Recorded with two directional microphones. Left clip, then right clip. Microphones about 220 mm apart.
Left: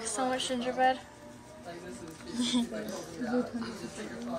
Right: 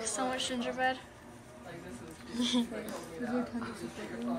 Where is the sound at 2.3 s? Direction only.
25° left (ahead or behind).